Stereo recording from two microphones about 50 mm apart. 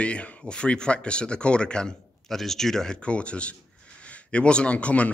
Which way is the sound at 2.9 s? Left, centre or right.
Left.